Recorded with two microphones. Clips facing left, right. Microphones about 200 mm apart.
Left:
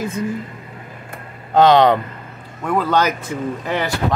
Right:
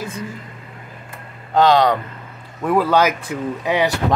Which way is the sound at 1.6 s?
20° left (ahead or behind).